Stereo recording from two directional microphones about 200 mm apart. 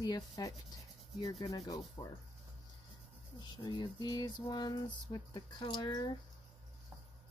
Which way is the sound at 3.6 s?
20° left (ahead or behind).